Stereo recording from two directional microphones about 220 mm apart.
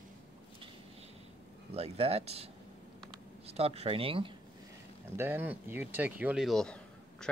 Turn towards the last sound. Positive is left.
turn(degrees=5)  # may be behind; listen again after turning